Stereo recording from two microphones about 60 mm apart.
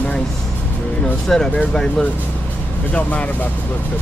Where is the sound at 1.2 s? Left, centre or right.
Centre.